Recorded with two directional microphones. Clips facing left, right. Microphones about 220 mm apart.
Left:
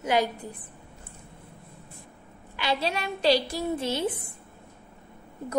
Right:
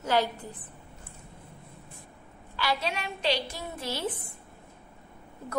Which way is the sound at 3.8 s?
20° left (ahead or behind).